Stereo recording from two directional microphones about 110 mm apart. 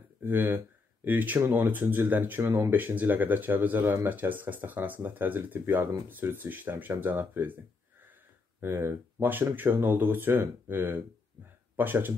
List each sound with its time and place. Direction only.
0.2 s speech: 20° right (ahead or behind)
8.5 s speech: 20° right (ahead or behind)